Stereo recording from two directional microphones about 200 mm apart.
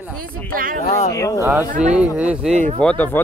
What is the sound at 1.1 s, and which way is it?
Speech, 15° left (ahead or behind).